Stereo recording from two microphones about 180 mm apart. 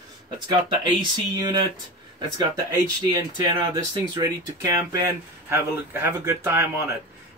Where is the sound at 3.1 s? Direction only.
25° right (ahead or behind).